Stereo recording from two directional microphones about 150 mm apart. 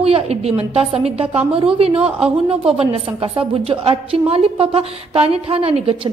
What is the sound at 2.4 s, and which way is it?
A woman's voice, 40° right (ahead or behind).